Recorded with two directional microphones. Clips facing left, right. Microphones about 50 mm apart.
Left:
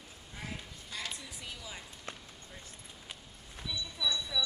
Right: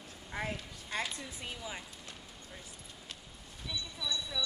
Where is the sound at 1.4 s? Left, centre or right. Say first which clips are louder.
Right 3 dB; right.